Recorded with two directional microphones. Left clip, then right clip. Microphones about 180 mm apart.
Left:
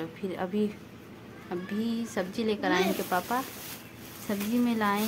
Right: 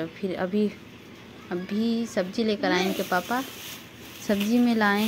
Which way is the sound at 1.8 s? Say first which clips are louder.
Right 6 dB; 15° right (ahead or behind).